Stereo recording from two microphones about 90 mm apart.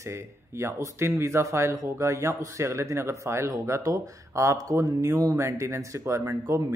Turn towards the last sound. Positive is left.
turn(degrees=-35)  # may be behind; listen again after turning